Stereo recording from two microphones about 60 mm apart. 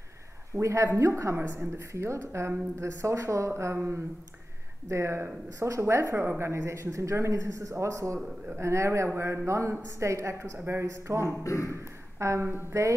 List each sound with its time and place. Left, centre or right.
0.6 s a man's voice: right
3.7 s speech: right
4.8 s a man's voice: right
10.7 s speech: right
11.4 s speech: left
11.7 s a man's voice: right